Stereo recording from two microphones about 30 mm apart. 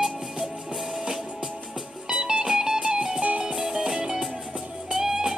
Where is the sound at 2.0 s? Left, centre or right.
Centre.